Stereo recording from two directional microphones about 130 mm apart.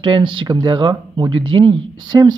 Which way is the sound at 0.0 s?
40° right (ahead or behind).